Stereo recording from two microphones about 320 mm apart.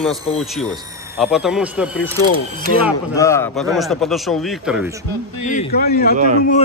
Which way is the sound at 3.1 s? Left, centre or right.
Centre.